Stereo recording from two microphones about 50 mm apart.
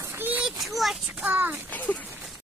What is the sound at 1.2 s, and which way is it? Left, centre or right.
Speech, right.